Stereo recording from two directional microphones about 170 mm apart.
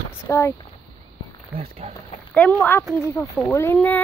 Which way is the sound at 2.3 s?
10° left (ahead or behind).